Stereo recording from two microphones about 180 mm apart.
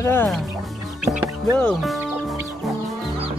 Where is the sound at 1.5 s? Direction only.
5° left (ahead or behind).